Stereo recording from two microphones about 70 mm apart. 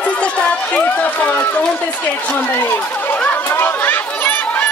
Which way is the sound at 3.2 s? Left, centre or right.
Left.